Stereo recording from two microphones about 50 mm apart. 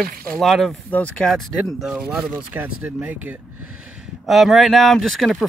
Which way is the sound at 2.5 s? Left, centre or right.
Right.